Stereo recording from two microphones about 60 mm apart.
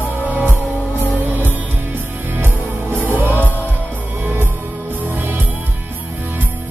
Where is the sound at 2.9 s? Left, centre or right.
Right.